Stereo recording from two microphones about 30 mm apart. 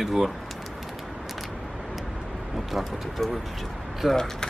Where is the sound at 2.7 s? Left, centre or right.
Centre.